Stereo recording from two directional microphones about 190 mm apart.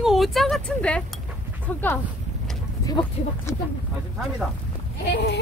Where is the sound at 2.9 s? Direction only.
20° left (ahead or behind).